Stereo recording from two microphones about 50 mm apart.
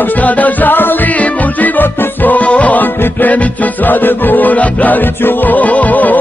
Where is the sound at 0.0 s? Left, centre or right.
Left.